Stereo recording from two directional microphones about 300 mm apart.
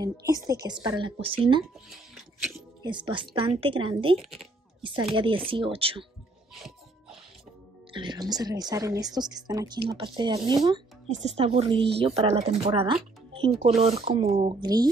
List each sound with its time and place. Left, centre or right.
0.0 s a woman's voice: centre
6.5 s music: centre
7.9 s a woman's voice: centre